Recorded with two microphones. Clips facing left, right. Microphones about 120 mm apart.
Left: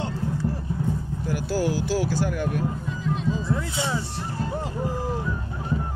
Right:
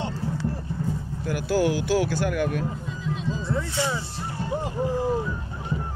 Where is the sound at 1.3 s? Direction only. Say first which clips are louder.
Right 2 dB; 65° right (ahead or behind).